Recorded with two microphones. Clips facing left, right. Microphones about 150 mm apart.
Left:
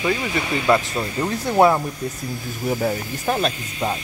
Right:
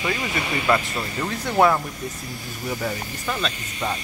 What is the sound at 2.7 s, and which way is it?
Speech, 40° left (ahead or behind).